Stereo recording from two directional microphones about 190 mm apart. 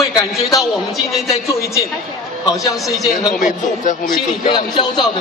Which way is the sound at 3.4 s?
45° left (ahead or behind).